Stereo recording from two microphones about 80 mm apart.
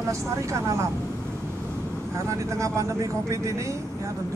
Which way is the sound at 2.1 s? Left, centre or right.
Right.